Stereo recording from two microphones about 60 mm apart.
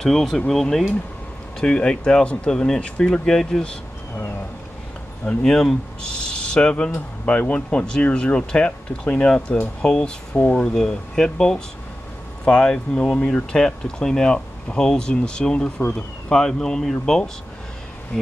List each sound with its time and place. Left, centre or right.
0.0 s speech: centre
5.4 s speech: centre